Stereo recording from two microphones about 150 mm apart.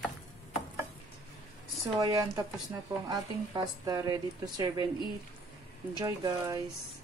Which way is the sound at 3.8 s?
25° right (ahead or behind).